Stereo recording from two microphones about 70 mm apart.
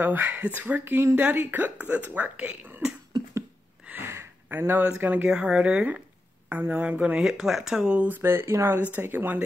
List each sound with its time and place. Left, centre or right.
0.0 s a woman's voice: right
4.0 s a sound: right
4.5 s a woman's voice: right
5.3 s a woman's voice: centre
7.2 s speech: centre
8.1 s speech: right
8.7 s a woman's voice: right